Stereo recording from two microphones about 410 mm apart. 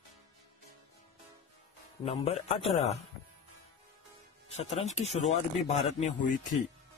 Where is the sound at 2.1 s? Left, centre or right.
Centre.